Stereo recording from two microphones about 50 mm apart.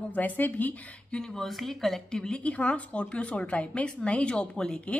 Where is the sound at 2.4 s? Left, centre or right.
Left.